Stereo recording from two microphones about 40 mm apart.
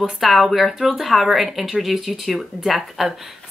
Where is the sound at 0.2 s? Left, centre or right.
Centre.